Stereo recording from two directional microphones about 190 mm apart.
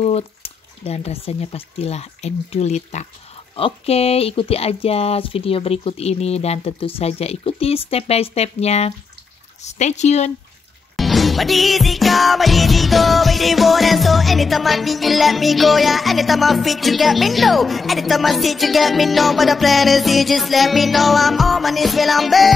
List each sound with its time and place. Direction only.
0.0 s speech: 30° left (ahead or behind)
11.0 s music: centre (ahead or behind)